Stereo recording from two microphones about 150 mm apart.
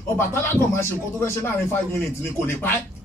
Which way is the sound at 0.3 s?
15° left (ahead or behind).